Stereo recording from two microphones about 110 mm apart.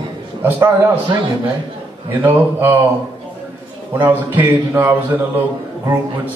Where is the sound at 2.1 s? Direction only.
20° right (ahead or behind).